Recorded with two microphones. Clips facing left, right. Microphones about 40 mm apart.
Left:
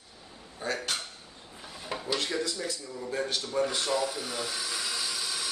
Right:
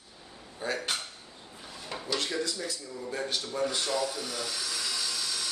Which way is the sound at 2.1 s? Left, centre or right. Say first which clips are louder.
Right 1 dB; centre.